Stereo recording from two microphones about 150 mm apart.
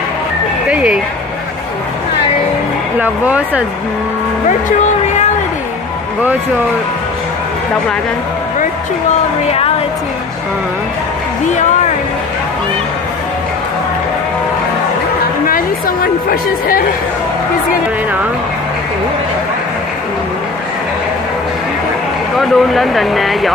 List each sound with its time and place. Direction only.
3.0 s speech: 10° right (ahead or behind)
15.4 s a woman's voice: 75° left (ahead or behind)
22.4 s speech: centre (ahead or behind)